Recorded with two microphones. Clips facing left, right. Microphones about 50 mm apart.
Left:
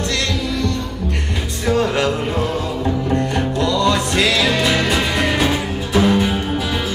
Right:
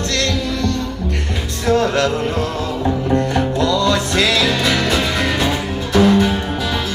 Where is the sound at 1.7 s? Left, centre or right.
Centre.